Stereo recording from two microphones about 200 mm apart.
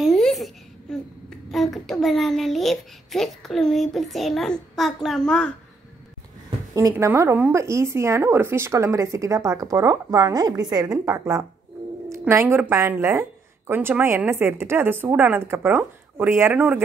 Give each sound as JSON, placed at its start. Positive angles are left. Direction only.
{"t": 0.0, "sound": "babbling", "side_deg": 0}
{"t": 1.5, "sound": "a child's voice", "side_deg": 0}
{"t": 6.7, "sound": "speech", "side_deg": -15}